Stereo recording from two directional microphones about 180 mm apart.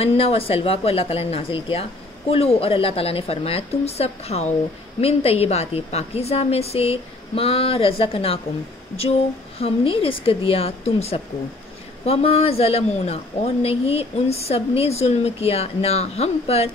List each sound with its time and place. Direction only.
0.0 s speech: 35° left (ahead or behind)
9.6 s speech: 30° left (ahead or behind)